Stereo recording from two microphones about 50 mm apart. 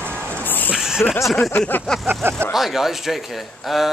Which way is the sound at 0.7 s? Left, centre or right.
Centre.